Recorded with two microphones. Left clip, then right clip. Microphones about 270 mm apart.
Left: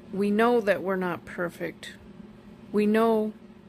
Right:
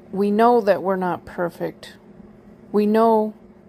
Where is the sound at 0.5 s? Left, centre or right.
Centre.